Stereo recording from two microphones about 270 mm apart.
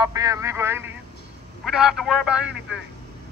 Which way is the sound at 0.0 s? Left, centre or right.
Centre.